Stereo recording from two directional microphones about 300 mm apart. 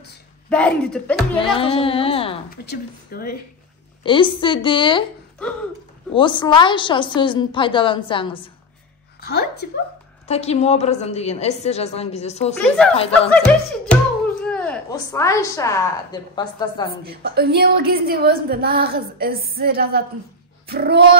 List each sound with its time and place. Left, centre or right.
0.5 s speech: centre
1.4 s a woman's voice: centre
2.5 s a woman's voice: left
4.0 s a woman's voice: centre
6.1 s a woman's voice: centre
9.2 s a woman's voice: left
10.2 s a woman's voice: left
12.6 s speech: centre
17.0 s a woman's voice: right